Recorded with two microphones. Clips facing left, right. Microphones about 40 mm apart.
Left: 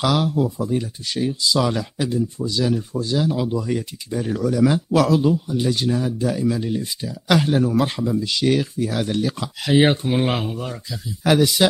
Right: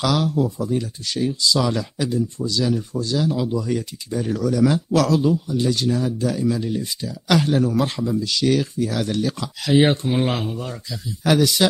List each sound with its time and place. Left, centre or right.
0.0 s speech: centre
2.3 s speech: centre